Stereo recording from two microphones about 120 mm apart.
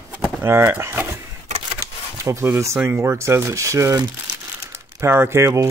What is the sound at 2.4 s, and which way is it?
Speech, 20° right (ahead or behind).